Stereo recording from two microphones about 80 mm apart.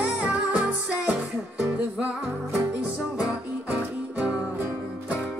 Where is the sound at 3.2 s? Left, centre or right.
Centre.